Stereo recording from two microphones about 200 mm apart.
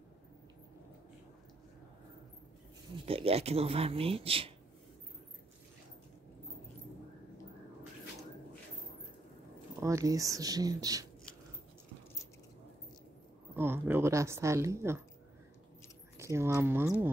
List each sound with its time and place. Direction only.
3.1 s speech: 30° right (ahead or behind)
9.8 s speech: 15° right (ahead or behind)
13.6 s speech: 10° right (ahead or behind)
16.2 s speech: 15° right (ahead or behind)